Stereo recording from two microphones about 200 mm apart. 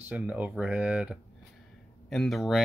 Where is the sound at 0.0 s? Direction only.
5° right (ahead or behind).